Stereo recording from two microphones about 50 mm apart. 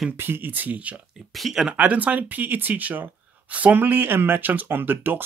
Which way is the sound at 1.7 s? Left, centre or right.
Right.